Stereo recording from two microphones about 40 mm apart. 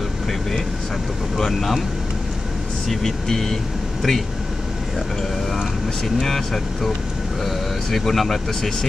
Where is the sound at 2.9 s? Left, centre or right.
Centre.